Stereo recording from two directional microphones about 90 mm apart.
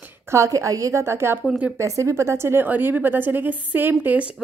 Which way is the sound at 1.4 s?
15° right (ahead or behind).